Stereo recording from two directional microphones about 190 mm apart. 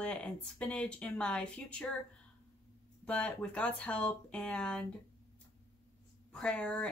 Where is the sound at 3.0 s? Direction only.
5° left (ahead or behind).